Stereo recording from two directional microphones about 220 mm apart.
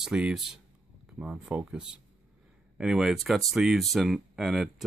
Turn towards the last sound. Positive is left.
turn(degrees=0)  # may be behind; listen again after turning